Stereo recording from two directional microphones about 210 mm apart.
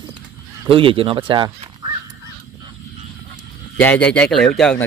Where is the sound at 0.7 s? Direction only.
25° right (ahead or behind).